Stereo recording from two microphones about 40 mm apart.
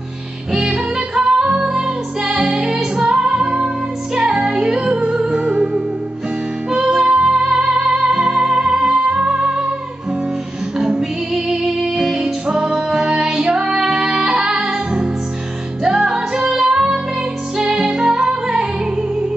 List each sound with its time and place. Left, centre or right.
0.5 s music: centre
6.7 s music: centre
10.8 s music: centre
12.4 s music: right
15.8 s music: centre